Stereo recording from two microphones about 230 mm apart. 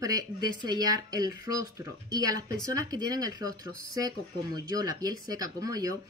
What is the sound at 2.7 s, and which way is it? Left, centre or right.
Speech, centre.